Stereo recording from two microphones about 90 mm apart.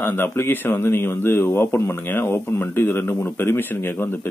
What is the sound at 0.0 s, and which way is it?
Speech, 25° left (ahead or behind).